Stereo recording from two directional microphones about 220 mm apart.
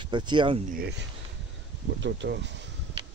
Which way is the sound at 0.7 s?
45° right (ahead or behind).